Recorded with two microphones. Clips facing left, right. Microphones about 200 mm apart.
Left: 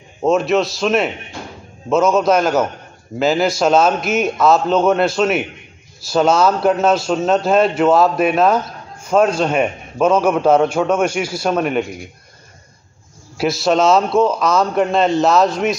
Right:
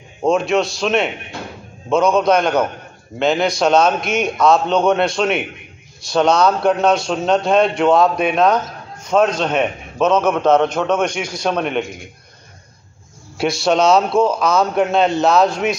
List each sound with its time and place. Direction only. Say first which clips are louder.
0.2 s a man's voice: left 1 dB; centre (ahead or behind)
13.4 s a man's voice: left 1 dB; centre (ahead or behind)